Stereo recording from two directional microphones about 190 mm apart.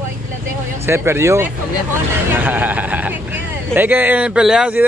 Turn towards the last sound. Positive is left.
turn(degrees=-5)  # may be behind; listen again after turning